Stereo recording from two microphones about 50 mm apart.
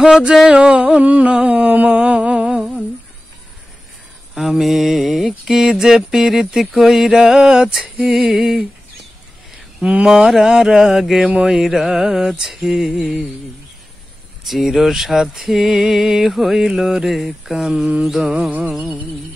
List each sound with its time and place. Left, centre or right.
0.0 s mantra: centre
1.0 s humming: right; by 2.8 s centre
4.4 s mantra: centre
9.8 s a sound: right
10.3 s mantra: centre
14.4 s mantra: centre
17.2 s speech: centre
18.2 s mantra: centre